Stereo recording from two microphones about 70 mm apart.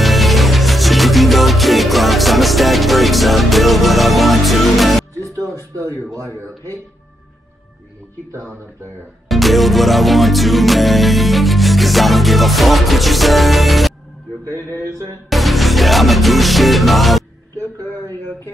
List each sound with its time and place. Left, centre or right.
0.0 s music: centre
5.3 s music: right
9.3 s music: centre
14.5 s mantra: left
15.2 s music: centre